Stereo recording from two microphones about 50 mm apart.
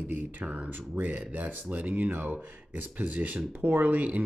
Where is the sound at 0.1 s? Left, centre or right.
Right.